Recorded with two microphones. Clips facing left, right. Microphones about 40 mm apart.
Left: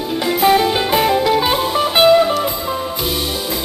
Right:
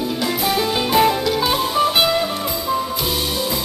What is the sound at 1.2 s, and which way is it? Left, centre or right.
Music, left.